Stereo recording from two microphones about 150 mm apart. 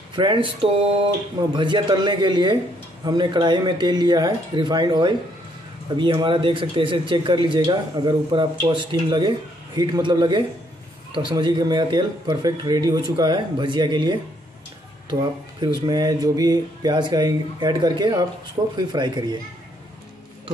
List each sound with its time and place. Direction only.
0.1 s speech: 30° right (ahead or behind)
15.6 s speech: 25° right (ahead or behind)